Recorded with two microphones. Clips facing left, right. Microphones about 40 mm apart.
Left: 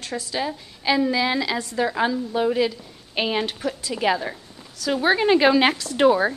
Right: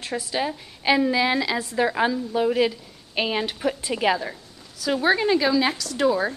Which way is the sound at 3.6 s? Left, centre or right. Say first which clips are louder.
Right 2 dB; right.